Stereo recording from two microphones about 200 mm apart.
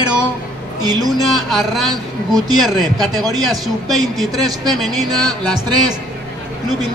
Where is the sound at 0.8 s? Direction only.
20° right (ahead or behind).